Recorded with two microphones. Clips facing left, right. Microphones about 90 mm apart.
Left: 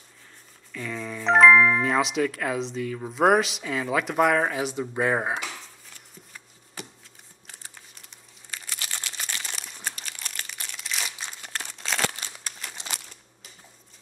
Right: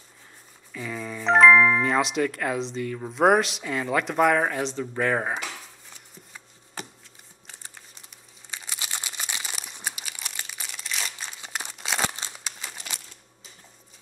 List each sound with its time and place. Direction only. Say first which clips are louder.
0.7 s speech: even; 5° right (ahead or behind)
4.7 s speech: even; 15° left (ahead or behind)
8.5 s crumpling: right 1 dB; 15° right (ahead or behind); by 11.1 s centre (ahead or behind)
11.4 s crumpling: right 1 dB; 15° right (ahead or behind)